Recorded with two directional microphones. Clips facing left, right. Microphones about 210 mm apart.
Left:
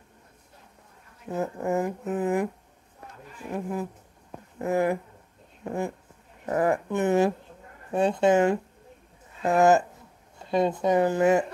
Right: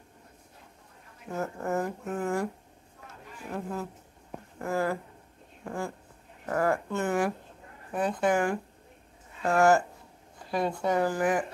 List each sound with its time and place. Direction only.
1.3 s speech: 15° left (ahead or behind)
4.6 s speech: 20° left (ahead or behind)